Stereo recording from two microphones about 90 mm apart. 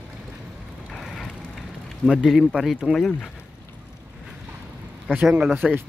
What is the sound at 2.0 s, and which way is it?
Speech, centre (ahead or behind).